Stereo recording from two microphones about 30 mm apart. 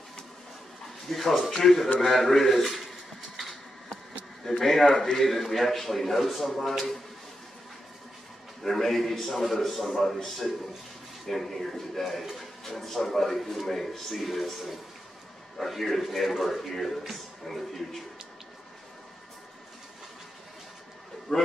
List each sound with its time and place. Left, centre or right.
1.1 s speech: centre
4.5 s speech: centre
8.6 s speech: centre
11.2 s speech: centre
14.2 s a man's voice: centre
21.3 s a man's voice: centre